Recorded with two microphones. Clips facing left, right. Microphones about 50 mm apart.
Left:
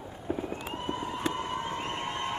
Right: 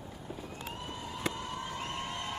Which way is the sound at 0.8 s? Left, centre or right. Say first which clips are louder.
Left 6 dB; left.